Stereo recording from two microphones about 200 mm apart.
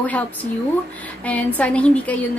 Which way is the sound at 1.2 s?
5° left (ahead or behind).